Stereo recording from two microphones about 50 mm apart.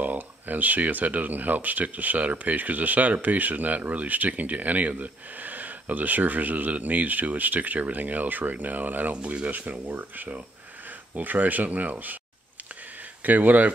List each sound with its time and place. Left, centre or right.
0.0 s speech: right
9.1 s speech: right
12.9 s a sound: right